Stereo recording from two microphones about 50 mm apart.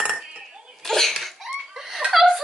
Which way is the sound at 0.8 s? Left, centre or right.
Centre.